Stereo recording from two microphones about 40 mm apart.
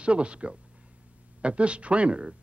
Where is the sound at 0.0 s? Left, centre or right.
Right.